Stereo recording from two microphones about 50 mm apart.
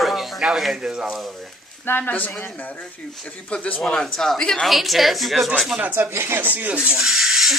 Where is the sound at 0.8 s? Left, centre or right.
Centre.